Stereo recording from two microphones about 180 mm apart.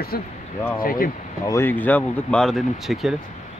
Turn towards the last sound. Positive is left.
turn(degrees=0)  # may be behind; listen again after turning